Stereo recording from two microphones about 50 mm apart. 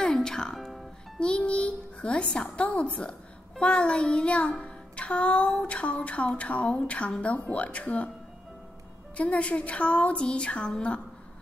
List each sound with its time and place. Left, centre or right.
0.0 s music: centre
1.2 s a child's voice: left
9.1 s a child's voice: left